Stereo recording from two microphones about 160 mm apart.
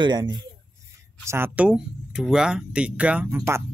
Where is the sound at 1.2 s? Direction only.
15° right (ahead or behind).